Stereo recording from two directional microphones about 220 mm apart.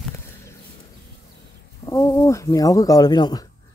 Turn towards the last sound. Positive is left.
turn(degrees=20)  # may be behind; listen again after turning